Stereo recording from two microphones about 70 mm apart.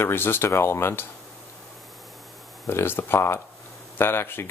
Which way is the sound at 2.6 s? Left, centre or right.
Left.